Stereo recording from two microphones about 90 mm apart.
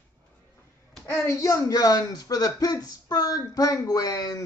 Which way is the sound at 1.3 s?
35° left (ahead or behind).